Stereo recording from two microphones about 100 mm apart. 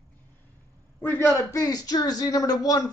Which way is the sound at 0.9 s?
20° left (ahead or behind).